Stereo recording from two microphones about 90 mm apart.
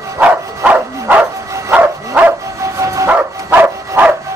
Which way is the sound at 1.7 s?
20° right (ahead or behind).